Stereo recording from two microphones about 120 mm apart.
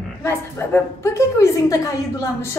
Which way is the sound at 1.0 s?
25° left (ahead or behind).